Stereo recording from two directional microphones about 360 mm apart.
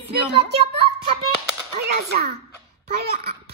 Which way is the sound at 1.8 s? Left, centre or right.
Right.